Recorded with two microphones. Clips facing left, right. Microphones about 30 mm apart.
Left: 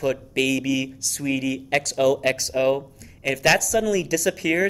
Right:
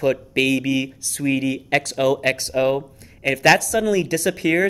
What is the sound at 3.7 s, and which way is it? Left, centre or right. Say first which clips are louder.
Speech: right 2 dB; right.